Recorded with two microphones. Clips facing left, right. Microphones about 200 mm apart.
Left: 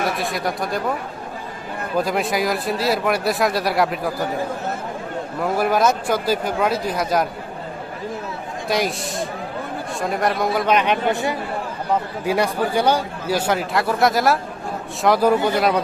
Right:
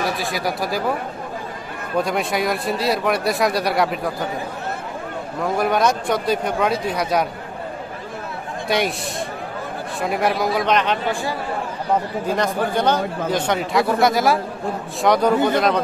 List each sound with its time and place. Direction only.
0.0 s speech: centre (ahead or behind)
2.0 s speech: centre (ahead or behind)
5.4 s speech: 5° left (ahead or behind)
8.6 s a man's voice: centre (ahead or behind)
9.9 s speech: centre (ahead or behind)
11.1 s speech: 20° left (ahead or behind)
12.3 s speech: 10° left (ahead or behind)